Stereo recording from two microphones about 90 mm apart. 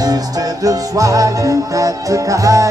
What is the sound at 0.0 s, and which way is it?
Music, 45° right (ahead or behind).